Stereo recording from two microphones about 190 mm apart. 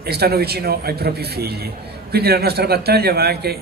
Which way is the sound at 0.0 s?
55° right (ahead or behind).